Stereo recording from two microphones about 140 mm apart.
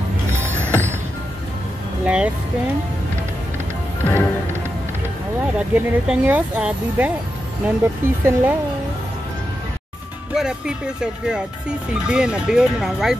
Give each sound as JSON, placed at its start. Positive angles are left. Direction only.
{"t": 0.3, "sound": "music", "side_deg": -15}
{"t": 2.0, "sound": "speech", "side_deg": -10}
{"t": 5.6, "sound": "speech", "side_deg": -10}
{"t": 10.3, "sound": "speech", "side_deg": -5}